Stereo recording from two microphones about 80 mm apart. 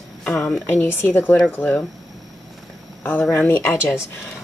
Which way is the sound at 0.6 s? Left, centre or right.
Left.